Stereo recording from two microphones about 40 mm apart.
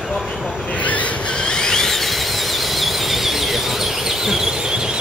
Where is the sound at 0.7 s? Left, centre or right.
Left.